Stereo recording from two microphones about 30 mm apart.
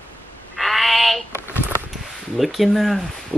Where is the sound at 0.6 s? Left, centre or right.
Centre.